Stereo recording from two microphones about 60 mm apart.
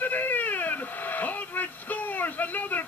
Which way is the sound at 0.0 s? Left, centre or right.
Left.